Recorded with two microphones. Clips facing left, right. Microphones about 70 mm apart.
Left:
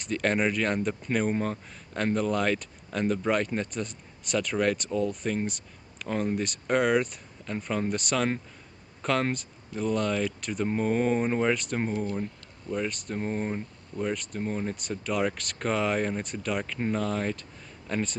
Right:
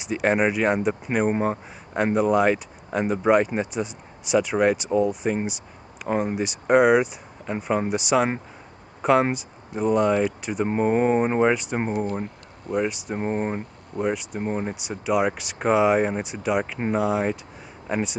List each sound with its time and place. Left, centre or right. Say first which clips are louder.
0.0 s speech: right 5 dB; centre
6.3 s speech: right 10 dB; centre; by 12.7 s right
12.7 s speech: right 6 dB; centre
13.1 s speech: right 5 dB; right
14.0 s speech: right 5 dB; centre
14.4 s speech: right 4 dB; right
14.8 s speech: right 8 dB; centre